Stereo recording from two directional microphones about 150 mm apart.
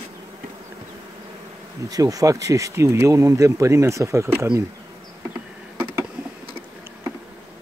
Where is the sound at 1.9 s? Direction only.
25° right (ahead or behind).